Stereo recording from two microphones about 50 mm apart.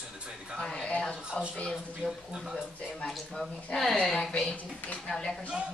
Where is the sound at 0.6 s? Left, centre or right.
Centre.